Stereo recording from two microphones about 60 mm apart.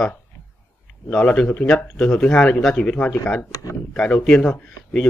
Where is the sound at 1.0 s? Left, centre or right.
Left.